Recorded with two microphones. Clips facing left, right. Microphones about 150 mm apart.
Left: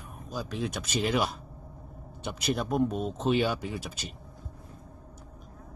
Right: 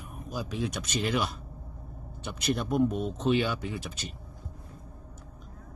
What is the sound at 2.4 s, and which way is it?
Speech, centre (ahead or behind).